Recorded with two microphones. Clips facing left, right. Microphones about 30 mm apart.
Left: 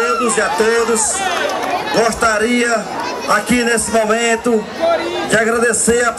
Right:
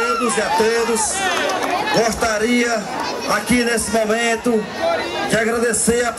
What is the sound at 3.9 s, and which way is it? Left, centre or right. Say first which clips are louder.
Speech: left 3 dB; left.